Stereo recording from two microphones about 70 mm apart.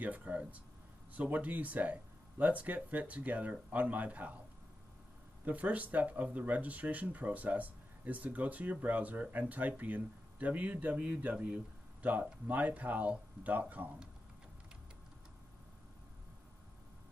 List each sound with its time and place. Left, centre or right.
0.0 s speech: right
5.4 s speech: right